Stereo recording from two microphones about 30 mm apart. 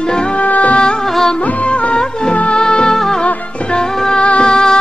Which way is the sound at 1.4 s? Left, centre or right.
Left.